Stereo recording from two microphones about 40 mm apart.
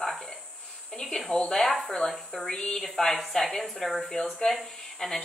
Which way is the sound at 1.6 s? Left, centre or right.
Centre.